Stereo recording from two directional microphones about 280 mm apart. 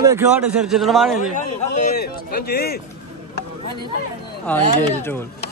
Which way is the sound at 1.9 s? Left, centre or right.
Left.